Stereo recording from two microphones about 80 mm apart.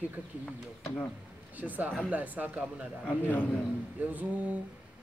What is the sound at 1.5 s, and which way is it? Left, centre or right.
A man's voice, right.